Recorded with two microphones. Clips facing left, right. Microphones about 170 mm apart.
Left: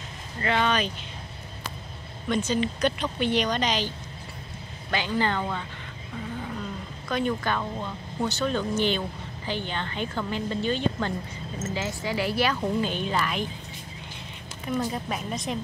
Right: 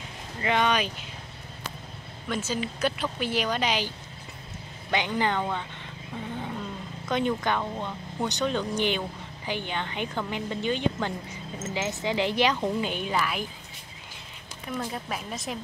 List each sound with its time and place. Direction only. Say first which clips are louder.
0.4 s speech: even; 15° right (ahead or behind)
2.2 s speech: left 5 dB; 5° right (ahead or behind)
4.9 s speech: even; 20° right (ahead or behind)
7.1 s speech: right 1 dB; 20° right (ahead or behind)
14.8 s speech: left 3 dB; centre (ahead or behind)